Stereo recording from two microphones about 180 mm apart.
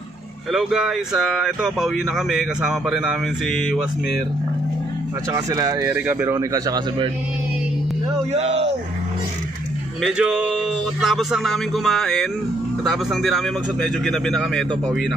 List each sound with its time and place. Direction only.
0.5 s speech: centre (ahead or behind)
5.3 s speech: 20° right (ahead or behind)
8.3 s speech: 35° right (ahead or behind)
10.0 s speech: 5° right (ahead or behind)